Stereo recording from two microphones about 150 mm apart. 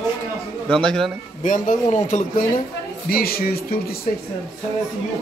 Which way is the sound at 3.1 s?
90° left.